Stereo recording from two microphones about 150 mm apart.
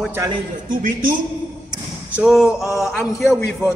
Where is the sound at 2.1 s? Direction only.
5° right (ahead or behind).